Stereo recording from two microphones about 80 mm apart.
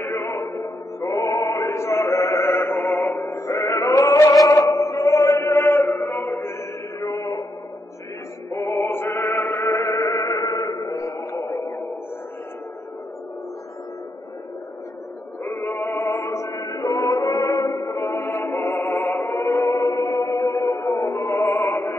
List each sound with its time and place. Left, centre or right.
0.0 s music: left
4.5 s a sound: left
4.8 s chant: left
7.1 s a sound: left
8.6 s music: left
16.1 s music: left